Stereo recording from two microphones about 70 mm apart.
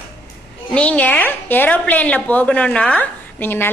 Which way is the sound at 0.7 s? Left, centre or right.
Centre.